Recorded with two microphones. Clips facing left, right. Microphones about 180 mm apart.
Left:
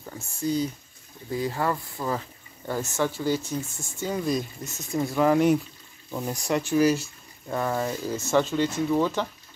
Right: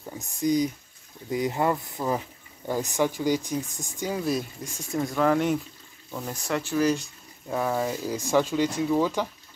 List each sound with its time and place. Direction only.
0.0 s speech: 15° right (ahead or behind)
4.9 s speech: 5° left (ahead or behind)
7.4 s speech: 5° right (ahead or behind)